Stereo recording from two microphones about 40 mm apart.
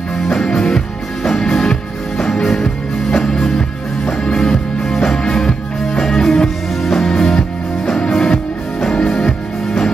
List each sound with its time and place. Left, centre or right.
0.3 s music: centre
3.3 s music: centre